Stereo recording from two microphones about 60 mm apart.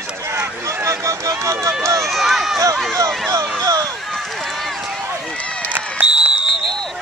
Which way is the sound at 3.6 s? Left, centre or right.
Right.